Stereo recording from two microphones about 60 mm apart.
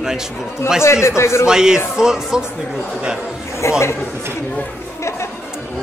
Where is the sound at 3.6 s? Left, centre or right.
Left.